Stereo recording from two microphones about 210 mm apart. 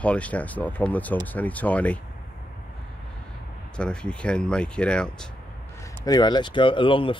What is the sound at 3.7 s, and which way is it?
Speech, 5° left (ahead or behind).